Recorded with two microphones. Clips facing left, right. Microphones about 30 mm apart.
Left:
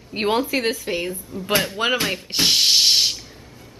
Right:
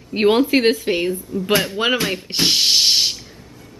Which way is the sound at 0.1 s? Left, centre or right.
Centre.